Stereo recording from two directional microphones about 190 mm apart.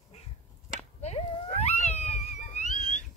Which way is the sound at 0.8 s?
35° left (ahead or behind).